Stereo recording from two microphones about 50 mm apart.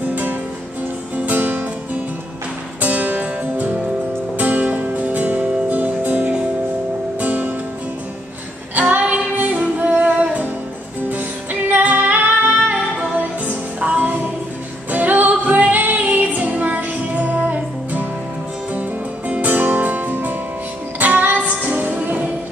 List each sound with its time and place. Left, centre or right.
0.0 s music: right
2.8 s music: right
8.7 s music: right